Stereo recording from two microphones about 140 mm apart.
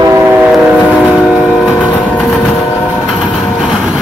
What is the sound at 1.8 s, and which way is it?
Vehicle, 5° left (ahead or behind).